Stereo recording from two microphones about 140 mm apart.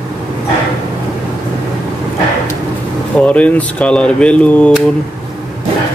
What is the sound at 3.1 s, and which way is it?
Speech, 10° left (ahead or behind).